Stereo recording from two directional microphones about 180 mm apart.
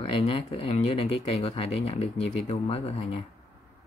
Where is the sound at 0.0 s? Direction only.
35° left (ahead or behind).